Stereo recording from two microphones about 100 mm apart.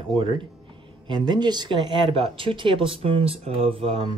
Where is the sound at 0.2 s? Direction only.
55° right (ahead or behind).